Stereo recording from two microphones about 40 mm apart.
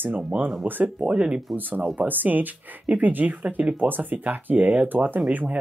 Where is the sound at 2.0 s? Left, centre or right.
Right.